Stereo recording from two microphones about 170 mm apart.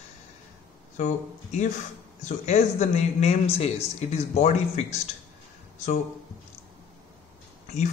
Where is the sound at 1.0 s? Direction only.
45° left (ahead or behind).